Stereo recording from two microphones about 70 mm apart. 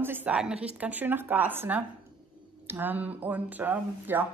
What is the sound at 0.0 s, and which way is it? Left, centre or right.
Speech, right.